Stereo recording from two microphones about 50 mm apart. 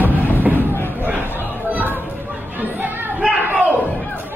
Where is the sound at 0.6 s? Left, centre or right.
Left.